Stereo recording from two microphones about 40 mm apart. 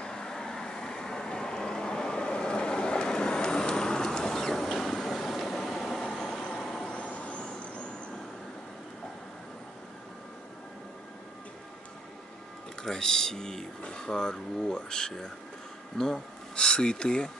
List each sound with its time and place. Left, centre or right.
0.0 s vehicle: centre
7.0 s vehicle: left
12.8 s speech: centre